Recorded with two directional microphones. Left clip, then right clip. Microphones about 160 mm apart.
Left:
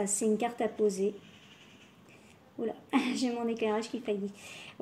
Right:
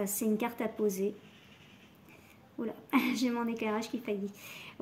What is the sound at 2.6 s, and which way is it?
Speech, 65° right (ahead or behind).